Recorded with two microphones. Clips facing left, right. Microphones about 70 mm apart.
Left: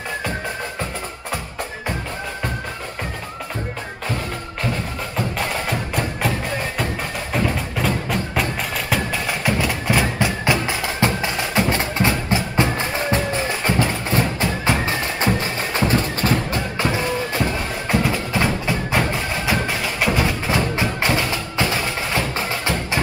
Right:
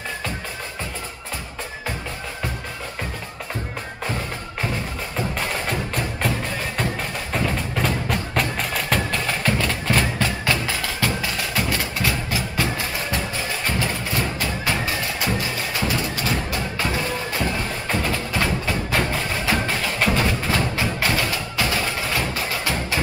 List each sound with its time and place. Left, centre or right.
5.1 s music: centre
7.3 s music: centre; by 13.6 s left
14.6 s music: left
16.7 s music: left
17.5 s music: centre